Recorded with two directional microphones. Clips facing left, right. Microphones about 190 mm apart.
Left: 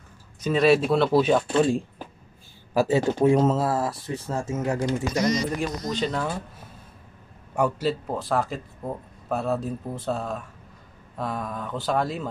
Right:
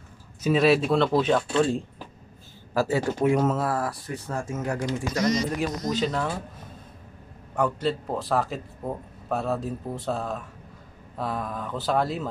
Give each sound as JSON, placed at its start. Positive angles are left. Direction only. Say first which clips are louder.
{"t": 0.4, "sound": "speech", "louder": "left 1 dB", "side_deg": -5}
{"t": 3.2, "sound": "speech", "louder": "left 2 dB", "side_deg": 30}
{"t": 5.6, "sound": "speech", "louder": "right 1 dB", "side_deg": -5}
{"t": 7.5, "sound": "a man's voice", "louder": "left 1 dB", "side_deg": 10}
{"t": 8.1, "sound": "speech", "louder": "even", "side_deg": 0}